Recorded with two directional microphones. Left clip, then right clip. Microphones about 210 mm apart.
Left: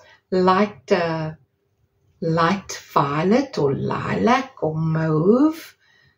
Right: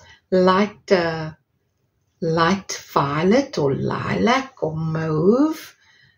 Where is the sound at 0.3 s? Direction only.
35° right (ahead or behind).